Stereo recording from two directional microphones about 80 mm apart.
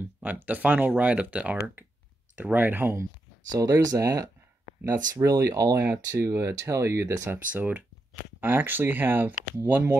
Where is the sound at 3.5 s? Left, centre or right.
Right.